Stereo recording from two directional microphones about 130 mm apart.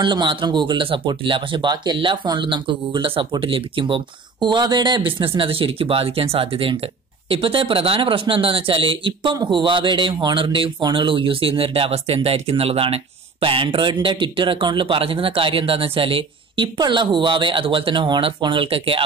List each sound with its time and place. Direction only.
0.0 s speech: 35° right (ahead or behind)